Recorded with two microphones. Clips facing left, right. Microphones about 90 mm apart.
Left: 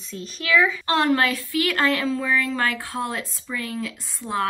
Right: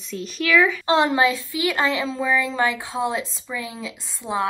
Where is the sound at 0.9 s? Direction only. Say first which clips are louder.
Right 2 dB; 20° right (ahead or behind).